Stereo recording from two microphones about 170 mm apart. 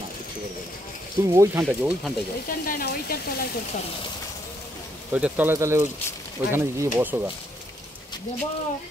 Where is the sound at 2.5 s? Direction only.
60° left (ahead or behind).